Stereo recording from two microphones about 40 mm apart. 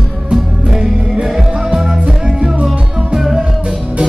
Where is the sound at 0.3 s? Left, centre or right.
Centre.